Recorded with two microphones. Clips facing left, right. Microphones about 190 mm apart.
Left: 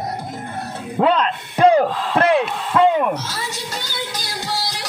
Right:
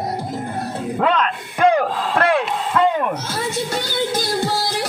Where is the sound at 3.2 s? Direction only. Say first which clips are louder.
Right 6 dB; 55° right (ahead or behind).